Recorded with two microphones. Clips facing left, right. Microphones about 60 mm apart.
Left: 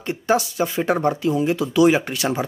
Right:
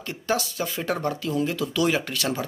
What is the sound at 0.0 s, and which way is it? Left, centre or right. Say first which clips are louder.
Speech: left 6 dB; left.